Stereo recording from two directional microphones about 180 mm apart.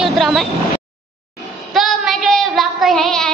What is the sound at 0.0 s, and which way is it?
Vehicle, centre (ahead or behind).